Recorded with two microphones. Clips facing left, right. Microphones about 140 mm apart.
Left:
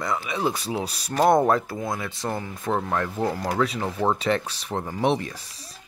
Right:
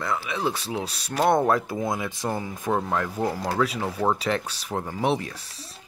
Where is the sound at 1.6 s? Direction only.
20° right (ahead or behind); by 5.4 s centre (ahead or behind).